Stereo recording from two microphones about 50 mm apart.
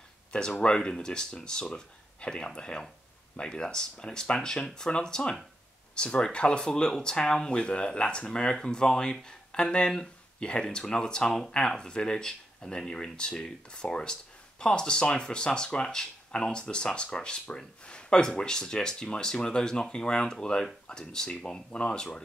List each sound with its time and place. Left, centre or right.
0.3 s speech: left